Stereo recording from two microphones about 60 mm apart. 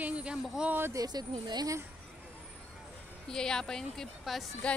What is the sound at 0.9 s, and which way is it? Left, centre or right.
Speech, right.